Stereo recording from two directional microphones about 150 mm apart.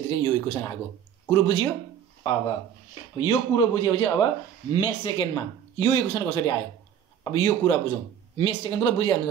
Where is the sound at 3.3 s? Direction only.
30° left (ahead or behind).